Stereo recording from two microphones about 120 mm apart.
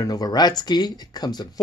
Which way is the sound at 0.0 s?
35° left (ahead or behind).